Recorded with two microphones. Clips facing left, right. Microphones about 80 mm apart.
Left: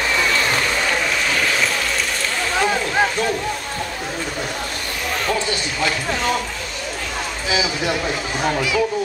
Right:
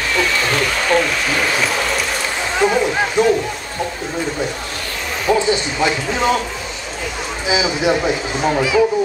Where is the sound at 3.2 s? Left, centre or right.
Centre.